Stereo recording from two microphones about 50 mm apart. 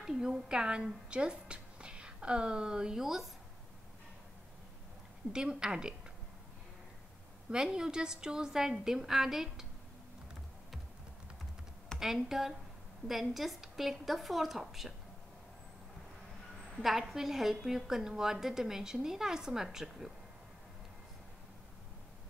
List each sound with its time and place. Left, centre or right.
0.0 s speech: centre
5.3 s a woman's voice: centre
7.5 s a woman's voice: centre
12.0 s a woman's voice: centre
16.8 s a woman's voice: centre